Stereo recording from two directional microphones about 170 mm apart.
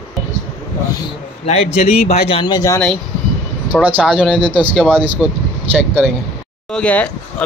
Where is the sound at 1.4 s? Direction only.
40° left (ahead or behind); by 2.8 s 20° left (ahead or behind).